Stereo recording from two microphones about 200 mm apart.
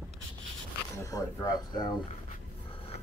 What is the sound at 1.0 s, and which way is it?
Speech, 15° left (ahead or behind).